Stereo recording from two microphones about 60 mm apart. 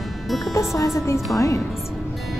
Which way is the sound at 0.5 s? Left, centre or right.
Left.